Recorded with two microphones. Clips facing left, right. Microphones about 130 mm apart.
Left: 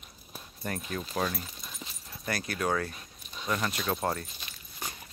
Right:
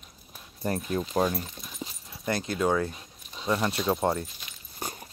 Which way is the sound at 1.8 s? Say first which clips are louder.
Right 9 dB; 25° right (ahead or behind).